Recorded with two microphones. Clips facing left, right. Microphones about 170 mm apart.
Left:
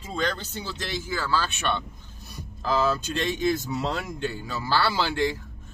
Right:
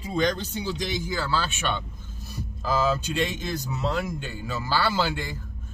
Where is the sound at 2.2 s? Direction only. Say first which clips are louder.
Even; 5° right (ahead or behind).